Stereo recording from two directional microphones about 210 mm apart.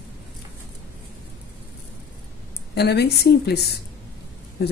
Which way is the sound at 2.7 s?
50° left (ahead or behind).